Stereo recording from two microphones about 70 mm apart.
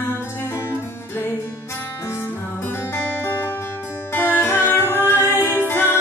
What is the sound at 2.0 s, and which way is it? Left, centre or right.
Music, left.